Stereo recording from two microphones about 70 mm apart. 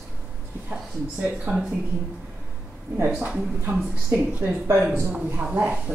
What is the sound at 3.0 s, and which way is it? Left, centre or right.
Speech, centre.